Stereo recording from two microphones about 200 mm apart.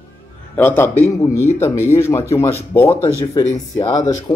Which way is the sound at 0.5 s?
10° left (ahead or behind).